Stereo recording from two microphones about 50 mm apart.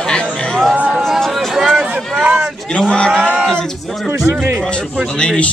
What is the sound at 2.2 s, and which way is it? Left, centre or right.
Speech, right.